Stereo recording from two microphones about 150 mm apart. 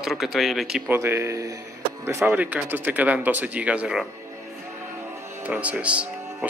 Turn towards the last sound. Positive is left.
turn(degrees=-10)  # may be behind; listen again after turning